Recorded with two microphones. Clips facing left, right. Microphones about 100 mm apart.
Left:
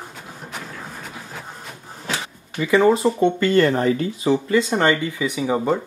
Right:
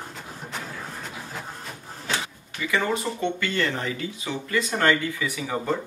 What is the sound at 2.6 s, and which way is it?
Speech, 30° left (ahead or behind).